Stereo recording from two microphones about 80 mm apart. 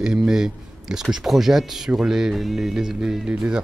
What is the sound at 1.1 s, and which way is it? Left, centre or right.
Speech, centre.